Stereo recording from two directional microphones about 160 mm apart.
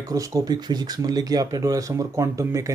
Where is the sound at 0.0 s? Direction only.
20° right (ahead or behind).